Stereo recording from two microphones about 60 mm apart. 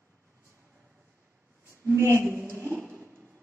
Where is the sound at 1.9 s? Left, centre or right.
Right.